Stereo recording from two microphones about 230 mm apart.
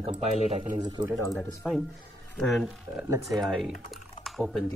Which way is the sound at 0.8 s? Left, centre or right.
Centre.